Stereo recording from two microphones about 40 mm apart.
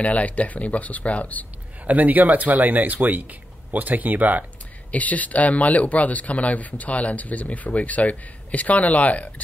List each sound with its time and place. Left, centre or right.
0.0 s speech: left
1.9 s speech: right
4.9 s speech: left